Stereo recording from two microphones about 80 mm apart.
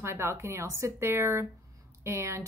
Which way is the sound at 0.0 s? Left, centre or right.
Right.